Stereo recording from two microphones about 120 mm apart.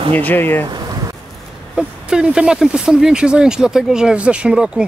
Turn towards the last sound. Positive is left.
turn(degrees=-5)  # may be behind; listen again after turning